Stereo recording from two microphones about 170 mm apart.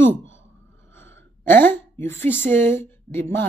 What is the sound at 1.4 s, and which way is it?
A woman's voice, 10° left (ahead or behind).